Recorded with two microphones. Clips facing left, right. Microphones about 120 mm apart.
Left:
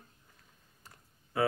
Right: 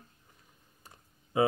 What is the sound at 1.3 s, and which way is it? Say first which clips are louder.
Speech: right 3 dB; 20° right (ahead or behind).